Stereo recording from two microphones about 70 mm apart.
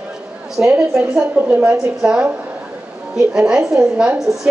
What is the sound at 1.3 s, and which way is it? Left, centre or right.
Speech, right.